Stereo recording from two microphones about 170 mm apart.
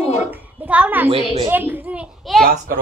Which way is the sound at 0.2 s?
10° right (ahead or behind).